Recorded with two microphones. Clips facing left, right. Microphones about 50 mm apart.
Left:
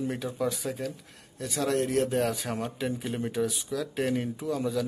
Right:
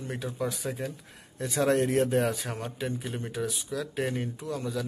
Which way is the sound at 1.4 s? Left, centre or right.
Right.